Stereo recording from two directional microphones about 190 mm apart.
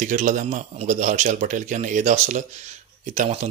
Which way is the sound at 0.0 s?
40° right (ahead or behind).